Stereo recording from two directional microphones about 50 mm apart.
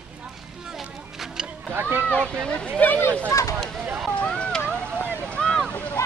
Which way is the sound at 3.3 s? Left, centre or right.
Left.